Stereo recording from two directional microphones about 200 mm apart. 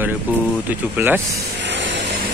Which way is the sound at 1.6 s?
65° right (ahead or behind).